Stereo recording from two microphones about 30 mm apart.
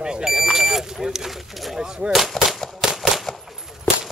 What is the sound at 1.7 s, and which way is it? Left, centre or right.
Speech, right.